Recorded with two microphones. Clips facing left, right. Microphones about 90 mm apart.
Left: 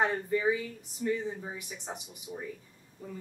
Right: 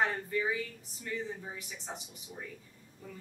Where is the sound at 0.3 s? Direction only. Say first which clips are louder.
Left 5 dB; 20° left (ahead or behind).